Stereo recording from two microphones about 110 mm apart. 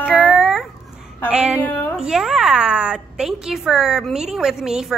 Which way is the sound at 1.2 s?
10° right (ahead or behind).